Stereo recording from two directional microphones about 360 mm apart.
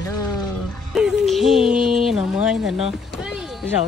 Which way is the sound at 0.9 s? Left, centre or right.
Centre.